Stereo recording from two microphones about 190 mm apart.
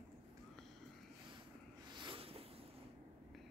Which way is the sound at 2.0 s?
30° right (ahead or behind).